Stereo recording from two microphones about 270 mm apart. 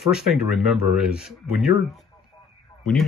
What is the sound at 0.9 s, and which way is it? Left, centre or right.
Speech, centre.